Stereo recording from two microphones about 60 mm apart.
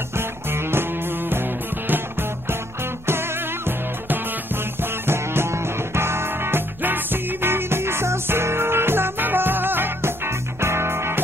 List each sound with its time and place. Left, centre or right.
0.1 s music: right